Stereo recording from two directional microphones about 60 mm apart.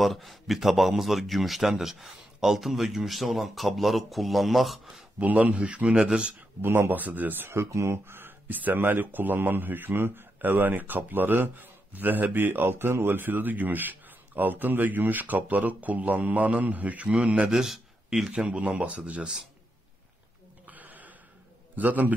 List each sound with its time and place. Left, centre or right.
0.0 s speech: centre
5.2 s a man's voice: right
6.6 s speech: right
7.5 s speech: right; by 17.6 s centre
17.6 s speech: centre
18.4 s a man's voice: right
20.6 s a sound: right
21.7 s a man's voice: right